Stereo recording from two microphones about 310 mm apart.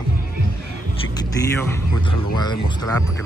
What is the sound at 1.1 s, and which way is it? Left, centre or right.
Speech, centre.